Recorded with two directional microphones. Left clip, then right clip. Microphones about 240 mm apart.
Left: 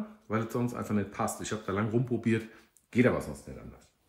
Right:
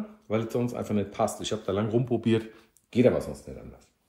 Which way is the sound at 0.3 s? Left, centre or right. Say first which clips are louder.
Right 4 dB; centre.